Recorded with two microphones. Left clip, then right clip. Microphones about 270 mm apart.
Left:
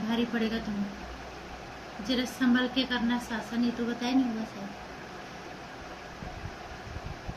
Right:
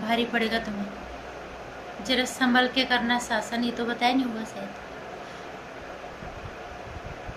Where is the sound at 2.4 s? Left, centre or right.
Centre.